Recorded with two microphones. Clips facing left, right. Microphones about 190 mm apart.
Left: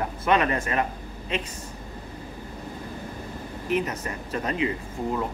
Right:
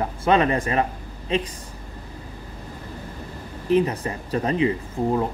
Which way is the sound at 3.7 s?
30° right (ahead or behind).